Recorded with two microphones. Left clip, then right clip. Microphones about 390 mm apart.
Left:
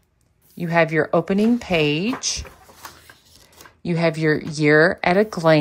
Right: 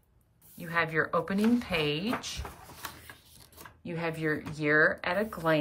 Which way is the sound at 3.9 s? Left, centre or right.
Centre.